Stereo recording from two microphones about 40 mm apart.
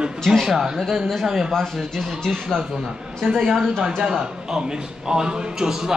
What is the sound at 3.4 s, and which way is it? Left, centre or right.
Speech, centre.